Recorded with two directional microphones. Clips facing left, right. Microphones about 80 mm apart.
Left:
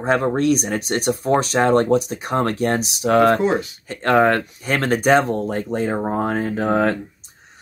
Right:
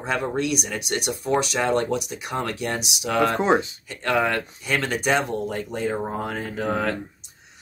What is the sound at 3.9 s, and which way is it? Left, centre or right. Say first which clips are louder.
Speech: left 7 dB; left.